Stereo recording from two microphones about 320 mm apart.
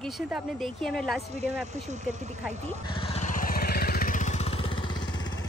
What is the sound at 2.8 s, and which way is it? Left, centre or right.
Vehicle, centre.